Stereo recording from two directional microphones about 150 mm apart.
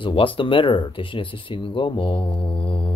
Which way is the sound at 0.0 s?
35° left (ahead or behind).